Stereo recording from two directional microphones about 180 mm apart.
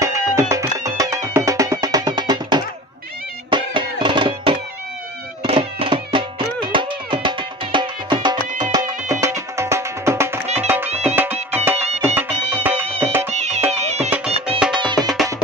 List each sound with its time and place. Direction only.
0.0 s music: 15° right (ahead or behind)
10.4 s music: 35° right (ahead or behind)
11.5 s music: 10° right (ahead or behind)
13.3 s music: 40° right (ahead or behind)
15.0 s music: centre (ahead or behind)